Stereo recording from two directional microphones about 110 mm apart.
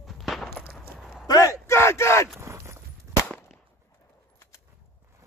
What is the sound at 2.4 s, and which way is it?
Speech, 25° right (ahead or behind).